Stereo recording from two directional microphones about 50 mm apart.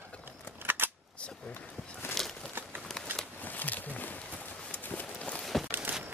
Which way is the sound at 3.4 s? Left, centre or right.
Left.